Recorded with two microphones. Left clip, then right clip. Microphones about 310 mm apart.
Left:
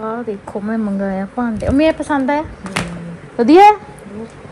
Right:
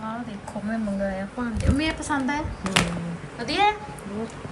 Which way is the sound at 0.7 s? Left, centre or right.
Left.